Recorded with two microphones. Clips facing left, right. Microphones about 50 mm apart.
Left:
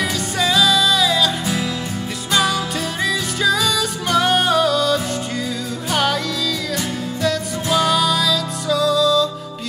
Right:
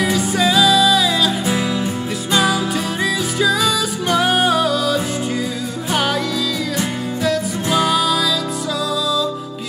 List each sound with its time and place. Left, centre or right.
0.0 s music: centre
2.3 s music: centre
7.2 s music: centre